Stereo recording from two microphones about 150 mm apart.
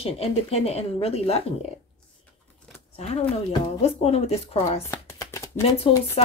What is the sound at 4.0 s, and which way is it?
Speech, 40° left (ahead or behind).